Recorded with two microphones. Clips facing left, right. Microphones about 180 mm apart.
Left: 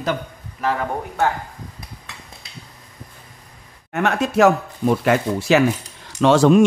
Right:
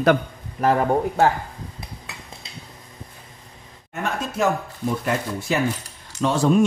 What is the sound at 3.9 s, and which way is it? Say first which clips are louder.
Speech: left 8 dB; 75° left (ahead or behind).